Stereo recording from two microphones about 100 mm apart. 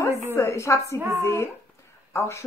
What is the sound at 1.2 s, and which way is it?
A woman's voice, 30° left (ahead or behind).